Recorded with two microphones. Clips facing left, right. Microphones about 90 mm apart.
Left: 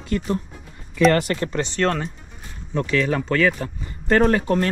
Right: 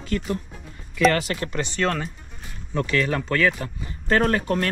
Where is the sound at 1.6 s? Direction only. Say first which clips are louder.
Left 2 dB; 5° right (ahead or behind).